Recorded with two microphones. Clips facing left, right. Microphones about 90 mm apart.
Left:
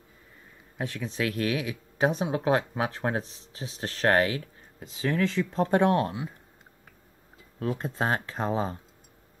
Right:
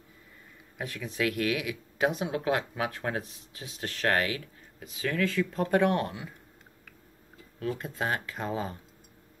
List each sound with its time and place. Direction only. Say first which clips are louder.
0.7 s speech: left 1 dB; 30° left (ahead or behind)
7.5 s speech: left 3 dB; 30° left (ahead or behind)